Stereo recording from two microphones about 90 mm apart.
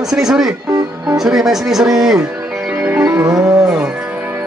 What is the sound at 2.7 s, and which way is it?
Music, 15° right (ahead or behind).